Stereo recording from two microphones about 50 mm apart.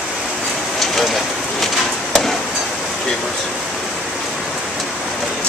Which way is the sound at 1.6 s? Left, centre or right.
Centre.